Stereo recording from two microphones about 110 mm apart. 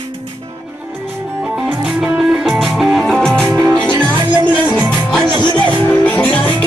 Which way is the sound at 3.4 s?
25° right (ahead or behind).